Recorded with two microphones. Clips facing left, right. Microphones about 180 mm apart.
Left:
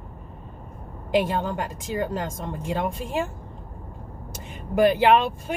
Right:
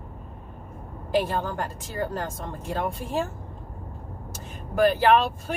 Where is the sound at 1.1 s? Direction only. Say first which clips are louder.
Left 2 dB; 15° left (ahead or behind).